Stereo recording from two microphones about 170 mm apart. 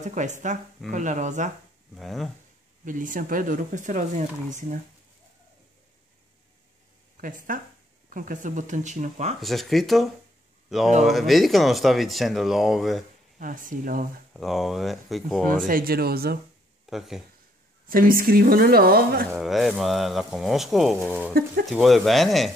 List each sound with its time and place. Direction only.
0.0 s speech: 45° right (ahead or behind)
2.0 s speech: centre (ahead or behind)
2.8 s speech: 50° right (ahead or behind)
7.2 s speech: 55° right (ahead or behind)
9.4 s speech: centre (ahead or behind)
13.4 s speech: 50° right (ahead or behind)
14.3 s speech: centre (ahead or behind)
15.4 s a woman's voice: 55° right (ahead or behind)
16.9 s speech: centre (ahead or behind)
17.8 s a woman's voice: 55° right (ahead or behind)
19.3 s speech: centre (ahead or behind)
21.3 s a woman's voice: 65° right (ahead or behind)
21.6 s speech: centre (ahead or behind)